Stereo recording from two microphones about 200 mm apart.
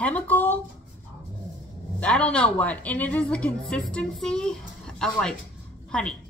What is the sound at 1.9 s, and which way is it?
A woman's voice, 5° left (ahead or behind).